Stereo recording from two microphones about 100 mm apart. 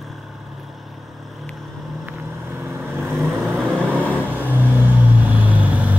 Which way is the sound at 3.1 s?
Centre (ahead or behind).